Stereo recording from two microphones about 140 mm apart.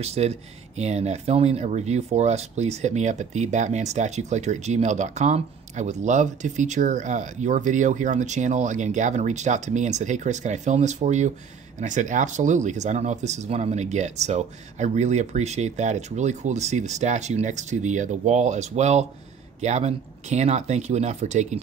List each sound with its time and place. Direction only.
0.0 s speech: 50° right (ahead or behind)